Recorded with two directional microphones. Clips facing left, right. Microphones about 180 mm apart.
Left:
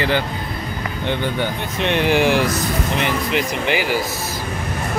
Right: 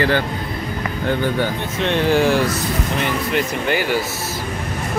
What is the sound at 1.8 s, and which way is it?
Speech, 15° left (ahead or behind).